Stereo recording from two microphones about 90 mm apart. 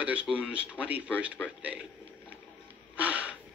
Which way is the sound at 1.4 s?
20° left (ahead or behind).